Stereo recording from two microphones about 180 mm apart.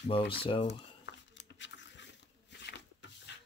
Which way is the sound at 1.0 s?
80° left.